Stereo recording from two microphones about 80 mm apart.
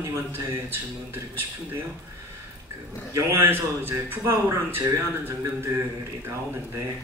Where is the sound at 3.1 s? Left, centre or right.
Right.